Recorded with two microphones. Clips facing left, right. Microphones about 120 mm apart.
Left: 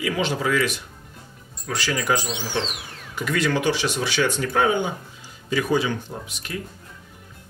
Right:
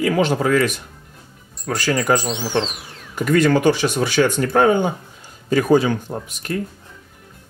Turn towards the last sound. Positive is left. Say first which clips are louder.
# right 7 dB
turn(degrees=-45)  # may be behind; listen again after turning